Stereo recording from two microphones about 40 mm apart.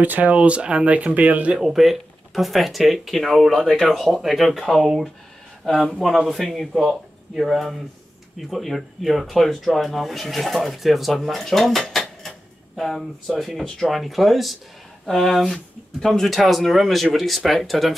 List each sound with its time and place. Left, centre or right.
0.0 s speech: right
1.6 s speech: centre
5.7 s speech: centre
5.9 s speech: centre
11.9 s dishes: centre
12.7 s speech: centre